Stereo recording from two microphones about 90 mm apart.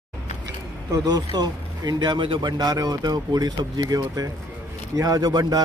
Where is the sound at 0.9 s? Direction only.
50° right (ahead or behind).